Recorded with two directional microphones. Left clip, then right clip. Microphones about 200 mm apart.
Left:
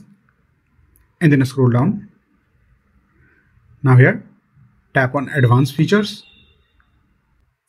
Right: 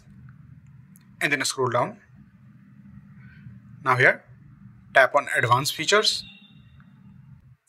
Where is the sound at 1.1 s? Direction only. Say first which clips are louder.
Left 6 dB; 20° right (ahead or behind).